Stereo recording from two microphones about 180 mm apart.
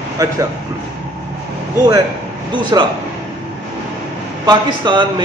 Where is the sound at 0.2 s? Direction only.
20° right (ahead or behind).